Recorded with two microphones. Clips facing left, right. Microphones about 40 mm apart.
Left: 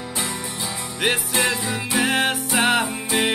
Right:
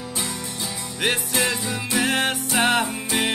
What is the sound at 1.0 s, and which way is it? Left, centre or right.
Music, centre.